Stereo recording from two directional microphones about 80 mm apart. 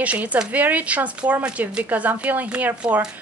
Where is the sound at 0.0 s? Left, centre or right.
Centre.